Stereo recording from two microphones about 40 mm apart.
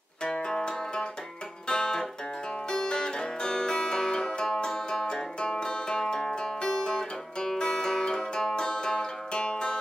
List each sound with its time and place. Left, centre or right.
0.2 s music: centre